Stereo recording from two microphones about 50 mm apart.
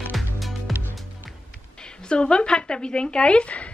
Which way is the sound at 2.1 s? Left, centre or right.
Centre.